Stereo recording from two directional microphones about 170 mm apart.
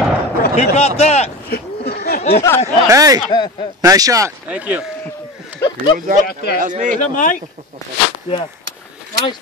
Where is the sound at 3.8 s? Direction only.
20° right (ahead or behind).